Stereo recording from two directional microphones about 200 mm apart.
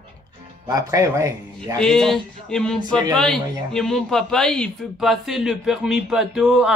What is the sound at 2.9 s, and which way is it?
Speech, 20° right (ahead or behind).